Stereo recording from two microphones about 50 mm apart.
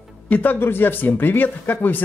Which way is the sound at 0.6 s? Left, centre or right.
Left.